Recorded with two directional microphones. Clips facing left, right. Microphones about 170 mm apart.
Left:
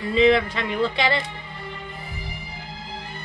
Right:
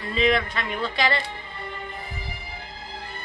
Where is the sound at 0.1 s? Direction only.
25° left (ahead or behind).